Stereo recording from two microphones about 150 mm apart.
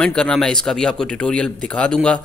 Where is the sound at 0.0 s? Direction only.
5° left (ahead or behind).